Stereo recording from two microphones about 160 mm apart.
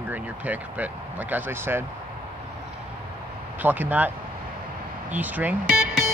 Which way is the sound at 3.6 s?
10° right (ahead or behind).